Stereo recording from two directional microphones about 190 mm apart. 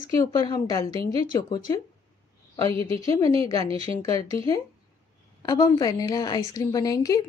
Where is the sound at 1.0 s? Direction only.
30° right (ahead or behind).